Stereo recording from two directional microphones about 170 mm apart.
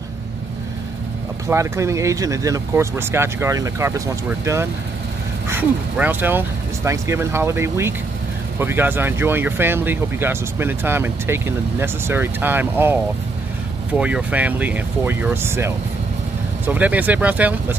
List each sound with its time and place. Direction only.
1.5 s speech: 15° right (ahead or behind)